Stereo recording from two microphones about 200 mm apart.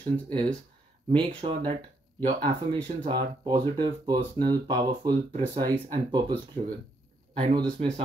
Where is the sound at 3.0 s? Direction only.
25° right (ahead or behind).